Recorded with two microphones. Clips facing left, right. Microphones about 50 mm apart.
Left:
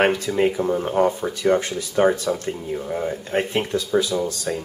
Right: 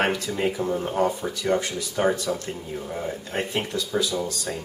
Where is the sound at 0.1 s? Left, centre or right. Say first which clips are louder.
Left 5 dB; centre.